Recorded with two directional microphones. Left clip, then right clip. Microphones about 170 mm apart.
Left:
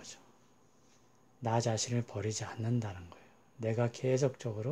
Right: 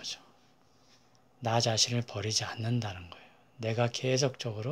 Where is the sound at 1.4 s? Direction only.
15° left (ahead or behind).